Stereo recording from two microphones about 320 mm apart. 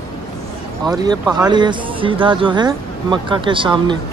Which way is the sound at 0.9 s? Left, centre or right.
Centre.